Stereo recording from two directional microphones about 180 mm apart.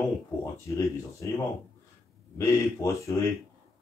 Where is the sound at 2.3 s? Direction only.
15° left (ahead or behind).